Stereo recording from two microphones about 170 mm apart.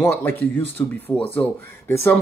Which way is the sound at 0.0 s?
15° left (ahead or behind).